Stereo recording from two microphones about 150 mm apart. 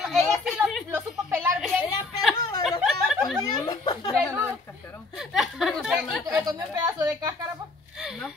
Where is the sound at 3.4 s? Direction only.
25° left (ahead or behind).